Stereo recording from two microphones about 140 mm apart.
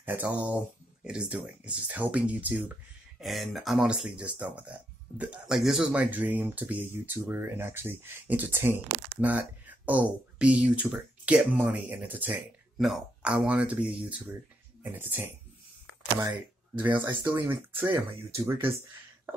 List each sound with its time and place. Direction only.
0.0 s speech: 10° right (ahead or behind)
3.2 s speech: centre (ahead or behind)
12.7 s speech: centre (ahead or behind)
16.9 s speech: 35° right (ahead or behind)
17.2 s speech: 15° right (ahead or behind)